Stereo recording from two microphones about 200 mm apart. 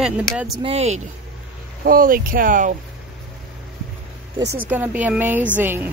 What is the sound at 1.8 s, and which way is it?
Speech, 45° right (ahead or behind).